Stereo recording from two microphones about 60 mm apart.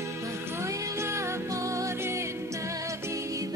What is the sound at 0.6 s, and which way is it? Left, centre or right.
Music, right.